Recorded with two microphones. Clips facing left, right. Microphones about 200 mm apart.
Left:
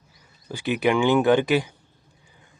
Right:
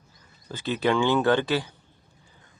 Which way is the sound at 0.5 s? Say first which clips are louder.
Left 2 dB; 15° left (ahead or behind).